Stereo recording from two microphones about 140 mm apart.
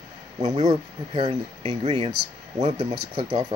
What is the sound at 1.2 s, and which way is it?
Speech, 45° right (ahead or behind).